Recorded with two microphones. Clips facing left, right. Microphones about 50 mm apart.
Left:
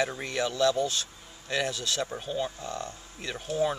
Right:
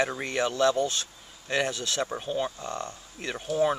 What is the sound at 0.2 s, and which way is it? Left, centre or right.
Speech, centre.